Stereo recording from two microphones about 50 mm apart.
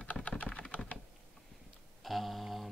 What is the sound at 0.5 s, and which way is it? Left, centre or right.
Computer keyboard, left.